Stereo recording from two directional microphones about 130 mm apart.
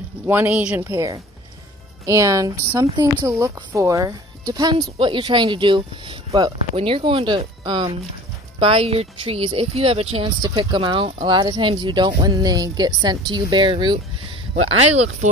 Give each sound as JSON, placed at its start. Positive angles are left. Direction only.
{"t": 0.3, "sound": "speech", "side_deg": -10}
{"t": 10.4, "sound": "speech", "side_deg": -35}
{"t": 14.5, "sound": "speech", "side_deg": -60}